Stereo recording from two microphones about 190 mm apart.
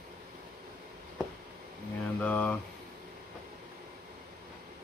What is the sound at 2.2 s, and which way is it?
Speech, 5° left (ahead or behind).